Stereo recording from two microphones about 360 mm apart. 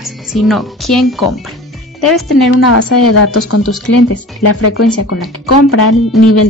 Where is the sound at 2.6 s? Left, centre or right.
Left.